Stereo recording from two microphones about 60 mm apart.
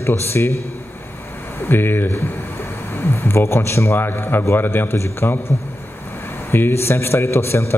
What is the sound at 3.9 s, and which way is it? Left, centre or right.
A man's voice, left.